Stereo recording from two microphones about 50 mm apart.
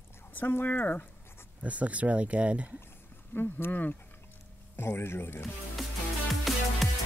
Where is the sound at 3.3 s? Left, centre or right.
Left.